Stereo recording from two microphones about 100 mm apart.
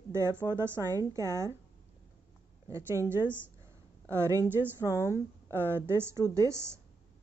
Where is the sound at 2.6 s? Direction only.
30° right (ahead or behind).